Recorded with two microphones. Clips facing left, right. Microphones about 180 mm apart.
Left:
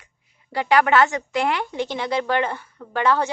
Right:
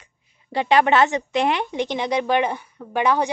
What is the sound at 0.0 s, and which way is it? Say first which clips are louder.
A woman's voice: right 1 dB; 20° right (ahead or behind).